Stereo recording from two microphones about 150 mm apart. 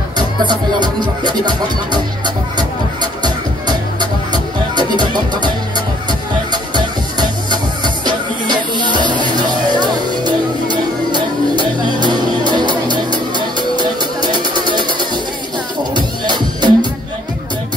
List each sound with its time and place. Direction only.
0.5 s music: 30° right (ahead or behind)
6.5 s music: 30° right (ahead or behind)